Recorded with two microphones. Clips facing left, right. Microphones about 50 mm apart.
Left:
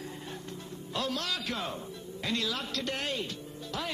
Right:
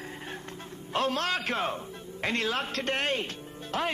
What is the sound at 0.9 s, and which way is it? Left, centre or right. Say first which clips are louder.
A man's voice: right 6 dB; right.